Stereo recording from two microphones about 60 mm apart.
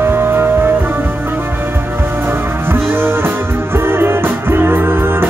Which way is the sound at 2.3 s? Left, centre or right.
Right.